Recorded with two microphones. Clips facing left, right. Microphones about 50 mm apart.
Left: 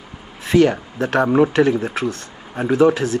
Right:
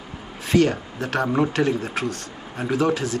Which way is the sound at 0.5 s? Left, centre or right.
Left.